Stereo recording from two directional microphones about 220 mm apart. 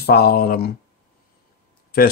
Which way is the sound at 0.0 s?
45° left (ahead or behind).